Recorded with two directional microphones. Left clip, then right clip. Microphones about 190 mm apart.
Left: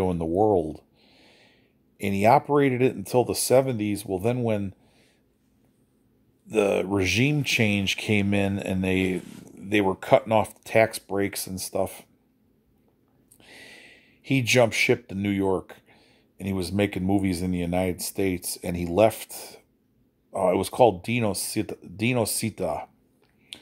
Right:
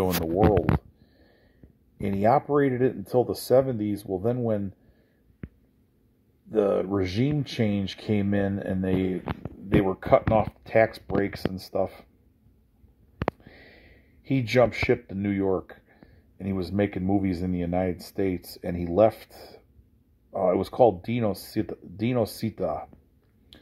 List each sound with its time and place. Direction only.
1.1 s a sound: 10° left (ahead or behind)
2.0 s speech: 10° left (ahead or behind)
6.5 s speech: 5° left (ahead or behind)
13.4 s speech: 10° left (ahead or behind)
23.5 s finger snapping: 5° left (ahead or behind)